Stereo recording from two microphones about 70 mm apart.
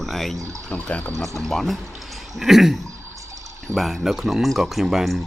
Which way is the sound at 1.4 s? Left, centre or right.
Centre.